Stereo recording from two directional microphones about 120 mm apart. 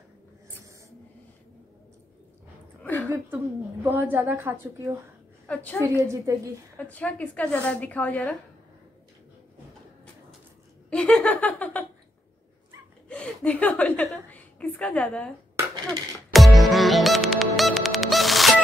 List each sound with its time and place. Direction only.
2.8 s a sound: 15° left (ahead or behind)
3.8 s a woman's voice: 15° right (ahead or behind)
5.5 s a woman's voice: 15° left (ahead or behind)
5.8 s a woman's voice: 25° right (ahead or behind)
6.8 s a woman's voice: 10° left (ahead or behind)
10.9 s laughter: 10° left (ahead or behind)
13.1 s chuckle: 10° left (ahead or behind)
14.3 s a sound: 10° left (ahead or behind)
16.3 s music: centre (ahead or behind)